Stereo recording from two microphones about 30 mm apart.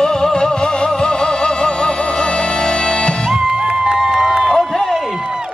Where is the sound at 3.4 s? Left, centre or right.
Right.